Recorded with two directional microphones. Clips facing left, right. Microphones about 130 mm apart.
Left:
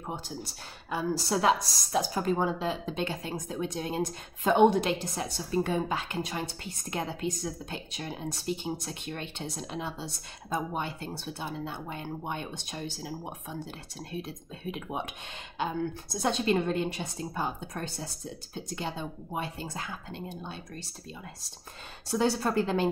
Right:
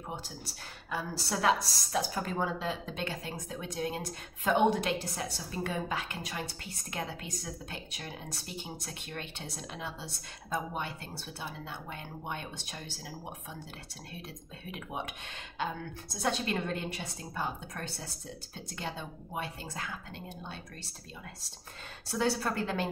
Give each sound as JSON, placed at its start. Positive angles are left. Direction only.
{"t": 0.8, "sound": "a woman's voice", "side_deg": 20}
{"t": 14.7, "sound": "a woman's voice", "side_deg": 25}
{"t": 16.2, "sound": "a woman's voice", "side_deg": 20}
{"t": 22.2, "sound": "a woman's voice", "side_deg": 25}